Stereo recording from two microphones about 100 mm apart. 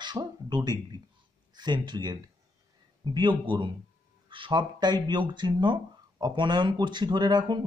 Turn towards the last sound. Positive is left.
turn(degrees=-50)  # may be behind; listen again after turning